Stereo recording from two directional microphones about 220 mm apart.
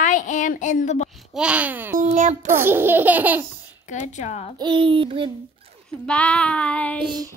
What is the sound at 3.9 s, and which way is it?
Baby cry, 35° left (ahead or behind).